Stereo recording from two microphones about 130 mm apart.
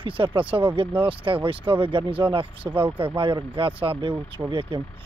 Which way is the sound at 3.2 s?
40° right (ahead or behind).